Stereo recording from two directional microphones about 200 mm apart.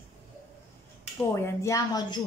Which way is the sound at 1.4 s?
15° left (ahead or behind).